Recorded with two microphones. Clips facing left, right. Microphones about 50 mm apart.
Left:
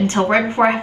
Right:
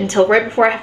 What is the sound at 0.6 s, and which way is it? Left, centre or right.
Speech, centre.